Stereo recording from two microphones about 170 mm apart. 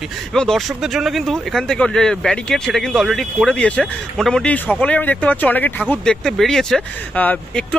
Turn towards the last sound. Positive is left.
turn(degrees=5)  # may be behind; listen again after turning